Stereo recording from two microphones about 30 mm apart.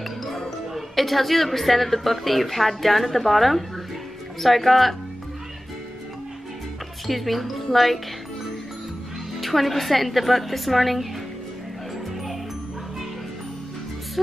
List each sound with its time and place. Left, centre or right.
0.0 s music: centre
0.7 s a woman's voice: centre
7.1 s a woman's voice: centre
9.4 s a woman's voice: centre